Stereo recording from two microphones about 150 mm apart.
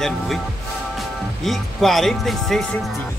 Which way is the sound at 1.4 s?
Centre (ahead or behind).